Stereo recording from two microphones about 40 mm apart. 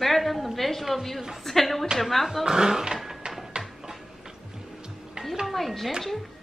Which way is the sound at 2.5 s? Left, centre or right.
Centre.